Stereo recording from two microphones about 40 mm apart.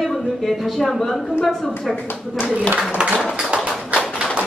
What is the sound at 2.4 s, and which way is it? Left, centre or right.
Speech, right.